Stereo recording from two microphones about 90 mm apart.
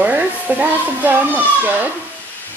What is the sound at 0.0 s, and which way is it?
A child's voice, 20° right (ahead or behind).